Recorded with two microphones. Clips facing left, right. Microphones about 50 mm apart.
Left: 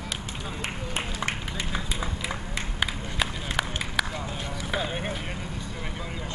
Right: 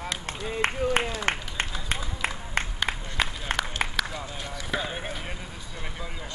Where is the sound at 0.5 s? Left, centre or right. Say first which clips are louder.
Right 9 dB; right.